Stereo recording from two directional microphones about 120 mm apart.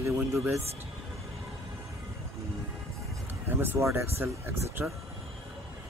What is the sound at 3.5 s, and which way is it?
Speech, 20° right (ahead or behind).